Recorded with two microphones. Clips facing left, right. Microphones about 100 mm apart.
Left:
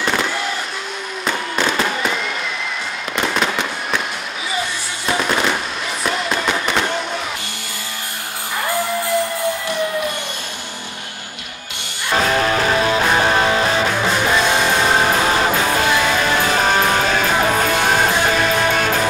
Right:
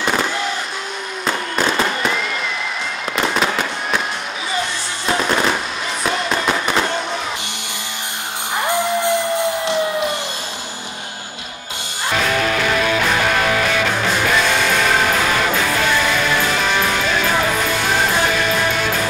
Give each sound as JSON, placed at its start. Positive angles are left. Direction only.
{"t": 1.6, "sound": "fireworks", "side_deg": 0}
{"t": 3.2, "sound": "fireworks", "side_deg": -5}
{"t": 5.0, "sound": "fireworks", "side_deg": 0}
{"t": 12.1, "sound": "music", "side_deg": 35}